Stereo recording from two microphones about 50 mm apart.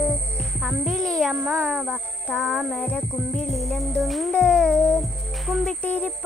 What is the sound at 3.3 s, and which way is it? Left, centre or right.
Music, centre.